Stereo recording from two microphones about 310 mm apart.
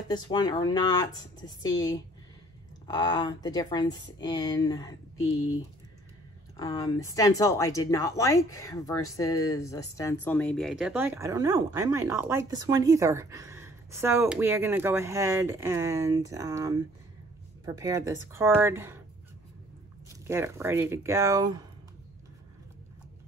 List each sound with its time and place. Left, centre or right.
0.1 s speech: centre
6.5 s speech: centre
20.1 s speech: centre